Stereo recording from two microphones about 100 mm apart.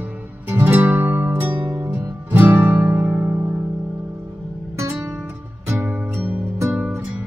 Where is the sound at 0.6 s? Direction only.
20° right (ahead or behind).